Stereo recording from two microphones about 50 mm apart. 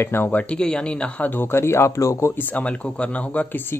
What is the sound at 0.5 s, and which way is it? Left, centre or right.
Speech, centre.